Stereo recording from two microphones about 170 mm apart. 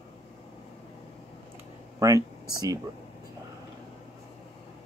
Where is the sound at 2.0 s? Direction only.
20° right (ahead or behind).